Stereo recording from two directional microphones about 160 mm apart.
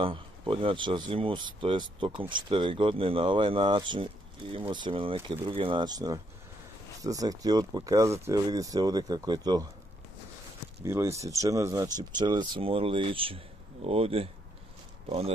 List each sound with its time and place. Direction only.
0.0 s speech: 35° right (ahead or behind)
10.8 s speech: 20° right (ahead or behind); by 15.3 s 40° right (ahead or behind)